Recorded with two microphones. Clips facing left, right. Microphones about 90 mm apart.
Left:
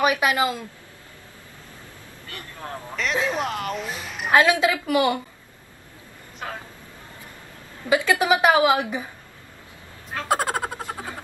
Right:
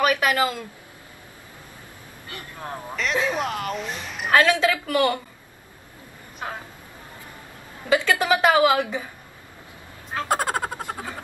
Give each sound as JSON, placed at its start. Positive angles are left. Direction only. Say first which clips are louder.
{"t": 0.0, "sound": "speech", "louder": "even", "side_deg": 15}
{"t": 3.0, "sound": "speech", "louder": "even", "side_deg": 0}
{"t": 4.3, "sound": "a woman's voice", "louder": "left 1 dB", "side_deg": 15}
{"t": 7.9, "sound": "a woman's voice", "louder": "left 1 dB", "side_deg": 15}
{"t": 10.2, "sound": "frog", "louder": "left 1 dB", "side_deg": 0}